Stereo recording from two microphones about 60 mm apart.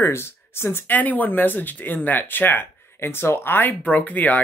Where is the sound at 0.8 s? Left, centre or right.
Left.